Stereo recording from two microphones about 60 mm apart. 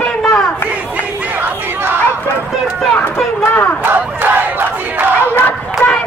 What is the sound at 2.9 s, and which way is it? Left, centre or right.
Run, left.